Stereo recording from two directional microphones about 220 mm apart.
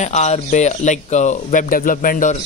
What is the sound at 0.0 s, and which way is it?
A man's voice, 30° left (ahead or behind).